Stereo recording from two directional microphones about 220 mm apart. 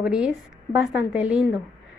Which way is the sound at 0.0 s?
5° right (ahead or behind).